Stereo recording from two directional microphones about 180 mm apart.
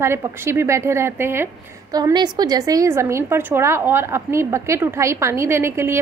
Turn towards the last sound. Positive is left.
turn(degrees=-15)  # may be behind; listen again after turning